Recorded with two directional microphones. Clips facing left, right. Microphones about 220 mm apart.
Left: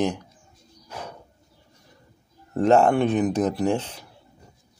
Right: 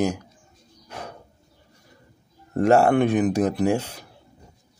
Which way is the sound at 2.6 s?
10° right (ahead or behind).